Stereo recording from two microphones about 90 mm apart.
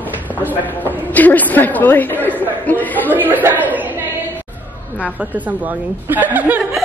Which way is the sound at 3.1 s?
20° right (ahead or behind).